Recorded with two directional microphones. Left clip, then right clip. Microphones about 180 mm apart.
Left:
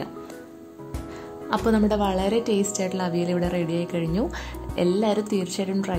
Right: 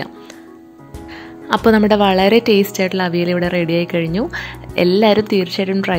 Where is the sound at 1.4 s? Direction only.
30° right (ahead or behind).